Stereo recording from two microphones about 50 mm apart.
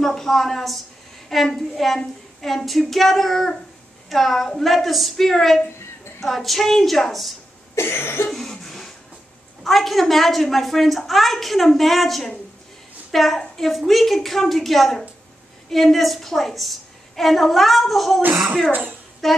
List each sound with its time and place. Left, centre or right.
0.0 s a woman's voice: centre
7.7 s cough: left
8.3 s cough: centre
9.6 s a woman's voice: centre
19.2 s a woman's voice: centre